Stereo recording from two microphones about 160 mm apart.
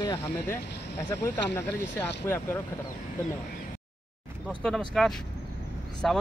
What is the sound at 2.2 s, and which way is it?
Speech, 15° left (ahead or behind).